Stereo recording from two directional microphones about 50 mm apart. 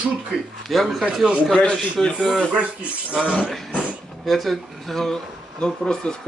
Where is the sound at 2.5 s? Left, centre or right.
Right.